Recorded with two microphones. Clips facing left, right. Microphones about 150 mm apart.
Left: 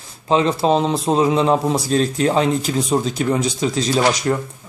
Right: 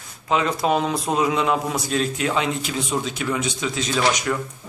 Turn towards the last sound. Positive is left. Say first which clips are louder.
# left 4 dB
turn(degrees=35)  # may be behind; listen again after turning